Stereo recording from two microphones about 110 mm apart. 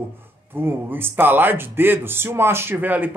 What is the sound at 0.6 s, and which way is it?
Speech, 20° right (ahead or behind).